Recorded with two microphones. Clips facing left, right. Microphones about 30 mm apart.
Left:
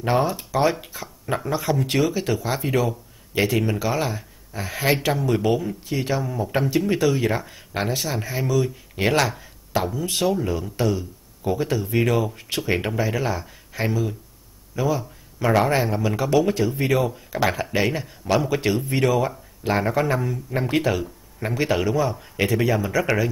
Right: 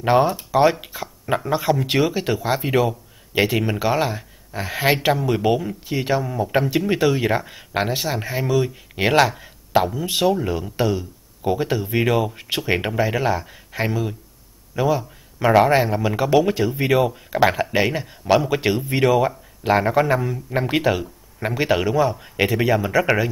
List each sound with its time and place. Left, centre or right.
0.0 s a man's voice: centre
5.3 s a man's voice: centre